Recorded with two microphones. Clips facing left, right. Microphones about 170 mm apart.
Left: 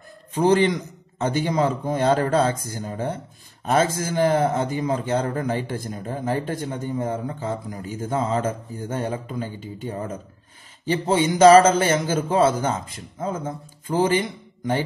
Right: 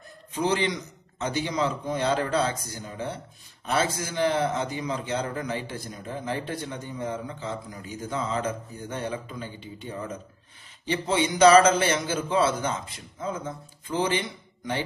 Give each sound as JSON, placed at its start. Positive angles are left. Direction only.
{"t": 0.3, "sound": "a man's voice", "side_deg": 50}